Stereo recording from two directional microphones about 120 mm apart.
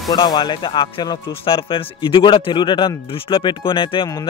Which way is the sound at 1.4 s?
50° left (ahead or behind).